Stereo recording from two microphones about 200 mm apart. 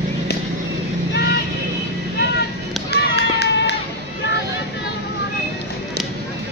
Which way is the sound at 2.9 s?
55° left (ahead or behind).